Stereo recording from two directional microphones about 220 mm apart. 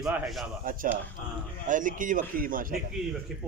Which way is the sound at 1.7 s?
35° right (ahead or behind).